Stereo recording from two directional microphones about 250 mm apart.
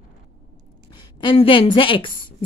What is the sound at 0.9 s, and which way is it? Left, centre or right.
A woman's voice, centre.